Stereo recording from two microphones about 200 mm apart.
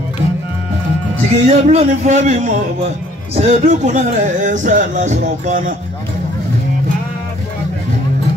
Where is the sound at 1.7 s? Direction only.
35° right (ahead or behind).